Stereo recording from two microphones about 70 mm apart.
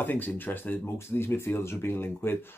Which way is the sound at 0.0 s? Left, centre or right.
Left.